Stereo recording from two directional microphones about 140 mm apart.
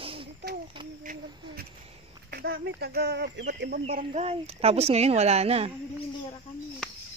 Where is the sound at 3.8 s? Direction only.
50° right (ahead or behind).